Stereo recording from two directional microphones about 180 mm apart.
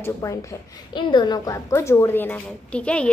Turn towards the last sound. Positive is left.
turn(degrees=5)  # may be behind; listen again after turning